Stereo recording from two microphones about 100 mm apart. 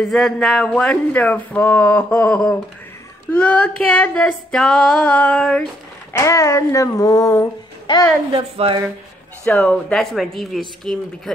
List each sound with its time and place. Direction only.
0.0 s speech: centre (ahead or behind)
6.1 s speech: 30° left (ahead or behind)
7.9 s speech: 55° left (ahead or behind)
8.3 s speech: 80° right
9.6 s speech: 10° left (ahead or behind)